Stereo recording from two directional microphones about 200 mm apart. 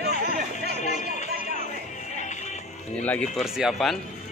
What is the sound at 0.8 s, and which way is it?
Music, 35° left (ahead or behind).